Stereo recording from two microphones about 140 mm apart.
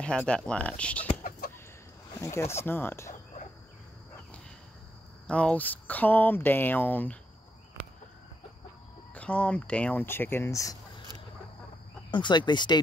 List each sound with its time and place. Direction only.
0.0 s speech: 5° left (ahead or behind)
2.1 s speech: 20° left (ahead or behind)
5.2 s speech: 10° left (ahead or behind)
9.1 s speech: 10° left (ahead or behind)
12.1 s speech: 35° left (ahead or behind)